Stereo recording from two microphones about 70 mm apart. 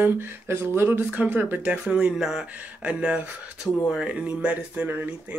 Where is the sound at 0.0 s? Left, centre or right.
Right.